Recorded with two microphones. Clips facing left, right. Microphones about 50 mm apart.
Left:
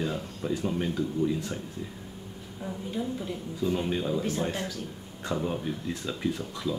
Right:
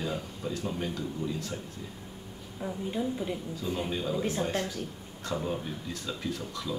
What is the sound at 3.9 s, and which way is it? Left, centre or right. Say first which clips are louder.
Speech: left 3 dB; centre.